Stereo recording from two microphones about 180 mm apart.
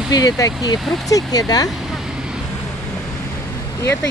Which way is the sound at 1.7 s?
Centre (ahead or behind).